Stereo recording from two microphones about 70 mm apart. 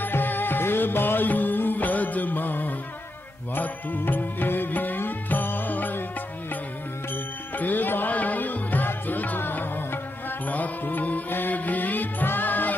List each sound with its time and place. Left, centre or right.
0.0 s music: left
7.5 s music: left